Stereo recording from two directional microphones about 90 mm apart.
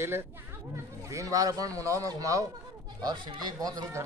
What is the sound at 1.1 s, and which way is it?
Speech, 40° right (ahead or behind).